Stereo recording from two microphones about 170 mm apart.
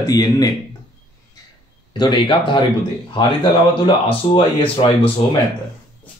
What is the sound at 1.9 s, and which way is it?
Speech, 25° left (ahead or behind).